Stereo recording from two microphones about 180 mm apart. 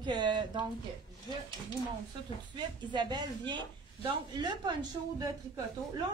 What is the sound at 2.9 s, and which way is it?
A woman's voice, 25° right (ahead or behind).